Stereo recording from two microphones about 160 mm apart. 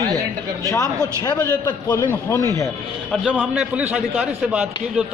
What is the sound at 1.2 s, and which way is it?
A man's voice, 25° left (ahead or behind).